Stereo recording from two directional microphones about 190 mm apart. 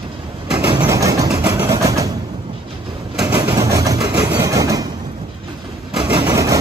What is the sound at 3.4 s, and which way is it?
Vehicle, 15° right (ahead or behind).